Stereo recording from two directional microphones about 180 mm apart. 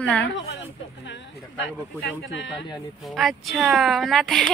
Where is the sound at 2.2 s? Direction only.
80° left.